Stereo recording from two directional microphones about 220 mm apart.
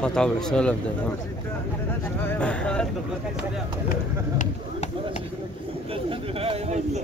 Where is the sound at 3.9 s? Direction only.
35° left (ahead or behind).